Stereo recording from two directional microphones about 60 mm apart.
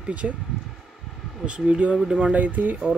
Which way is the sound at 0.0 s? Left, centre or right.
Right.